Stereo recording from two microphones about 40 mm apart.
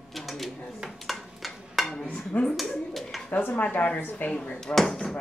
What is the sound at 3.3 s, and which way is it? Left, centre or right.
Speech, left.